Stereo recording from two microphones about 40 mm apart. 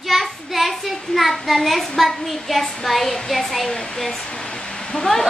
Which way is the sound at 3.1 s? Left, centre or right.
Centre.